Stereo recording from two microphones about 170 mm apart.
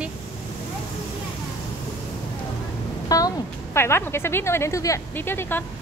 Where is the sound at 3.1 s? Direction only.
20° left (ahead or behind).